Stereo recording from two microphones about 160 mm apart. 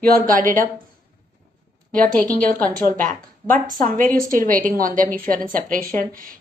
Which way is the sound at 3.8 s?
60° right (ahead or behind).